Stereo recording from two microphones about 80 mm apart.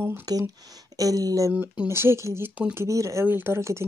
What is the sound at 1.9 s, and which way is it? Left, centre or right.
Speech, right.